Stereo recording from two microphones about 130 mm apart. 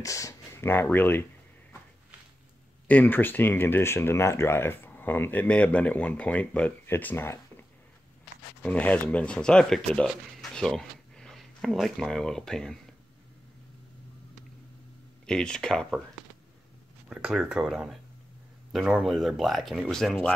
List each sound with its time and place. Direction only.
0.0 s speech: 25° left (ahead or behind)
2.9 s speech: 15° left (ahead or behind)
8.6 s speech: 10° left (ahead or behind)
15.2 s speech: 5° left (ahead or behind)
17.1 s speech: 5° right (ahead or behind)